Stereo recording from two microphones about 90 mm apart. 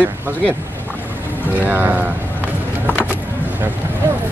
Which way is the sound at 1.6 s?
20° right (ahead or behind).